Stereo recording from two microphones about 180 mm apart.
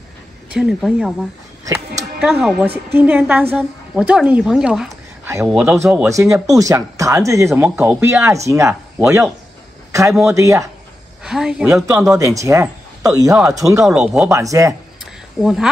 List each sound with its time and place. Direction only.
0.6 s speech: centre (ahead or behind)
2.1 s a woman's voice: 5° right (ahead or behind)
6.0 s speech: 15° right (ahead or behind)
7.6 s speech: 5° right (ahead or behind)
10.3 s speech: 15° right (ahead or behind)
11.2 s speech: 5° right (ahead or behind)
11.7 s speech: 15° right (ahead or behind)
13.8 s speech: 5° right (ahead or behind)
14.3 s speech: 20° right (ahead or behind)
15.4 s speech: centre (ahead or behind)